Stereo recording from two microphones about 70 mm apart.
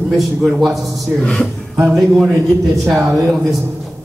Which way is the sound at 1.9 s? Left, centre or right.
Centre.